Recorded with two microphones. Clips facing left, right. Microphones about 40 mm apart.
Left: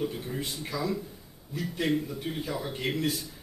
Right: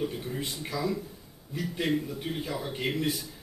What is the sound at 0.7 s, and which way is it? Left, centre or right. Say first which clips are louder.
Speech: right 1 dB; centre.